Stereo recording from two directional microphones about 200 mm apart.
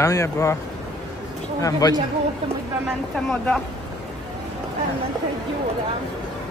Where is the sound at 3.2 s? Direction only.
5° left (ahead or behind).